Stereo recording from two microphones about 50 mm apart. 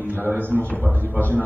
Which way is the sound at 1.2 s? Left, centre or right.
Left.